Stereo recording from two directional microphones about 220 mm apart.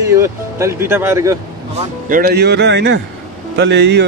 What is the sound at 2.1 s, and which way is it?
Speech, 40° right (ahead or behind).